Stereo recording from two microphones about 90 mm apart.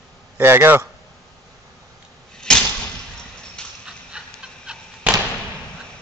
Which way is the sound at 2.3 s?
5° left (ahead or behind).